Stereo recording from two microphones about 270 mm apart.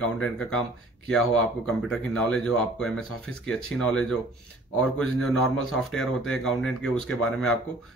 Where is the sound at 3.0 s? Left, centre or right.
Left.